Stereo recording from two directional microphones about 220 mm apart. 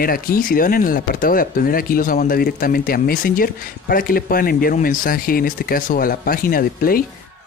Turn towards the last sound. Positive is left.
turn(degrees=40)  # may be behind; listen again after turning